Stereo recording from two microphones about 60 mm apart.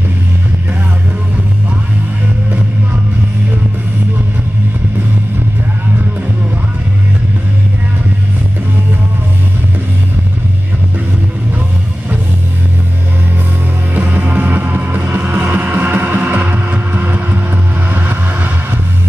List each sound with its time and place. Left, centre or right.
13.9 s music: right
17.8 s vehicle: right